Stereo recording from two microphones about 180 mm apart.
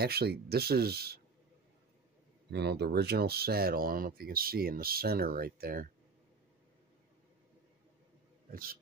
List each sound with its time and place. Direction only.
0.0 s speech: 60° right (ahead or behind)
2.5 s speech: 65° right (ahead or behind)
8.5 s a man's voice: 55° right (ahead or behind)